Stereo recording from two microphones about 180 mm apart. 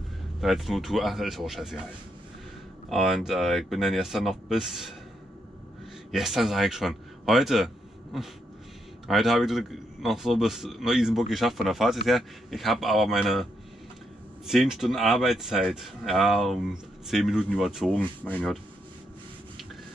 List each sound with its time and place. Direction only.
0.4 s a man's voice: centre (ahead or behind)
2.9 s a man's voice: centre (ahead or behind)
6.1 s a man's voice: centre (ahead or behind)